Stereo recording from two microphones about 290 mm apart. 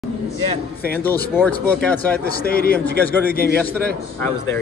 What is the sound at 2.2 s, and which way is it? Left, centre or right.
Speech, left.